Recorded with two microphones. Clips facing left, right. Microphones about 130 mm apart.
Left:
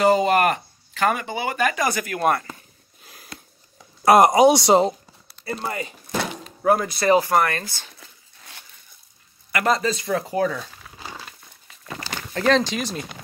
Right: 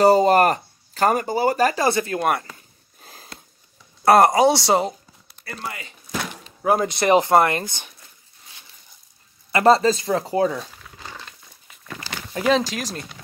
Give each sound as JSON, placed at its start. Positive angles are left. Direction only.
{"t": 0.0, "sound": "speech", "side_deg": -40}
{"t": 3.0, "sound": "a sound", "side_deg": -35}
{"t": 4.0, "sound": "speech", "side_deg": 15}
{"t": 5.7, "sound": "speech", "side_deg": 40}
{"t": 6.6, "sound": "speech", "side_deg": -20}
{"t": 9.5, "sound": "speech", "side_deg": -30}
{"t": 11.0, "sound": "crumpling", "side_deg": 10}
{"t": 12.4, "sound": "speech", "side_deg": -5}